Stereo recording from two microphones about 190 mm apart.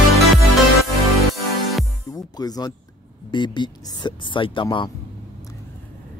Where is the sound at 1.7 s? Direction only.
Centre (ahead or behind).